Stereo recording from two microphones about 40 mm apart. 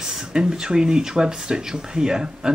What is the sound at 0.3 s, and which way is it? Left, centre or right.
Speech, centre.